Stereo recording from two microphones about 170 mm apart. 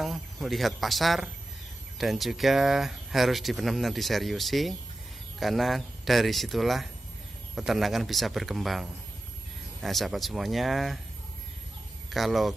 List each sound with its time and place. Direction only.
0.0 s speech: centre (ahead or behind)
12.1 s speech: centre (ahead or behind)